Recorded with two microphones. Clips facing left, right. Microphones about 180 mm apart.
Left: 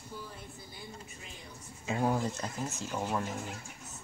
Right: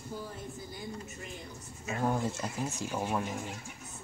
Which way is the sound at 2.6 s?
15° right (ahead or behind).